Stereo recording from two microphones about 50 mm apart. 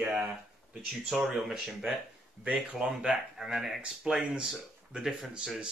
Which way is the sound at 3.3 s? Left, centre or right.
Centre.